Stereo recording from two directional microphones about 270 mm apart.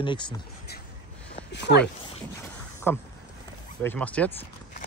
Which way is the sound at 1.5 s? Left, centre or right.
Left.